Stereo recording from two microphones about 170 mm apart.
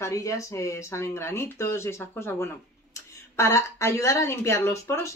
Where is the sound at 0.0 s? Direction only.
20° left (ahead or behind).